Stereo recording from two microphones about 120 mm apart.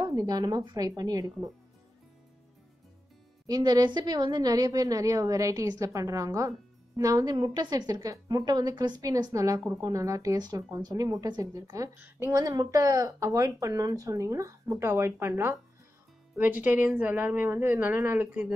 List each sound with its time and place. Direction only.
0.0 s a woman's voice: 30° right (ahead or behind)
3.4 s a woman's voice: 35° right (ahead or behind); by 18.5 s 15° right (ahead or behind)